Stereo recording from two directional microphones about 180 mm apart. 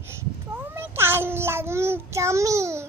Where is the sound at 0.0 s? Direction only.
10° right (ahead or behind).